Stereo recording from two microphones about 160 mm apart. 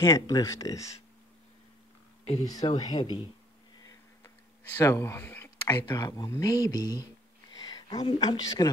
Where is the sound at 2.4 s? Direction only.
25° left (ahead or behind).